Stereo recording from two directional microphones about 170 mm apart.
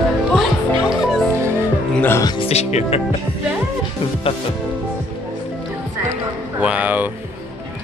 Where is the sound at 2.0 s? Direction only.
15° left (ahead or behind).